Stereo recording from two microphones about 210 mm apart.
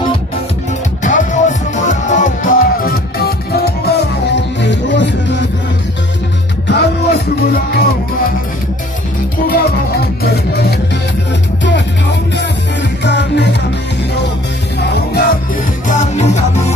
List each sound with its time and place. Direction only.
1.0 s music: 35° left (ahead or behind); by 5.4 s 55° left (ahead or behind)
6.7 s music: 50° left (ahead or behind)
9.5 s music: 50° left (ahead or behind)
14.8 s music: 50° left (ahead or behind)
16.2 s music: 35° left (ahead or behind)